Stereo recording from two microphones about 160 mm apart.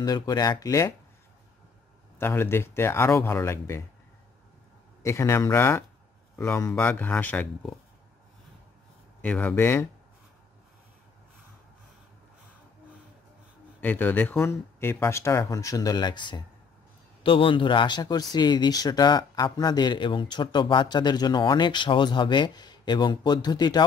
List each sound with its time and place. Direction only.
0.0 s speech: 25° left (ahead or behind)
2.1 s speech: 15° left (ahead or behind)
5.0 s speech: 15° left (ahead or behind)
9.2 s speech: 10° left (ahead or behind)
13.7 s speech: 10° left (ahead or behind)